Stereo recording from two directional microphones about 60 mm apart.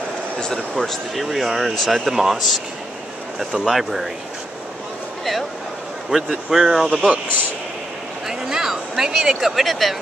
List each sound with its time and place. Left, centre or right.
0.7 s speech: centre
6.0 s speech: centre
7.0 s speech: right
8.3 s a sound: centre